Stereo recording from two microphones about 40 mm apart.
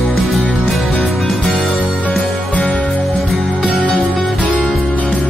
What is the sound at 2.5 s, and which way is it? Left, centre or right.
Music, left.